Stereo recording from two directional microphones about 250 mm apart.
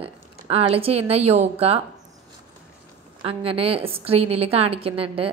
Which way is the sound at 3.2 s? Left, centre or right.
Right.